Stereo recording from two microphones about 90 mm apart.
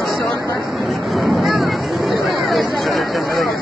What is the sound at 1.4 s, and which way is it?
Hubbub, centre (ahead or behind).